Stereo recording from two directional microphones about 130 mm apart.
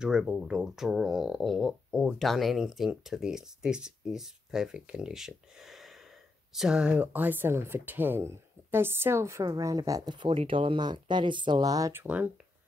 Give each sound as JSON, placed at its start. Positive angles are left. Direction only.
{"t": 0.0, "sound": "speech", "side_deg": -5}
{"t": 11.9, "sound": "speech", "side_deg": -15}